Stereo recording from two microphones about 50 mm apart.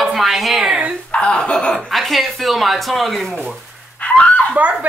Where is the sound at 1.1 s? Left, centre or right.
Centre.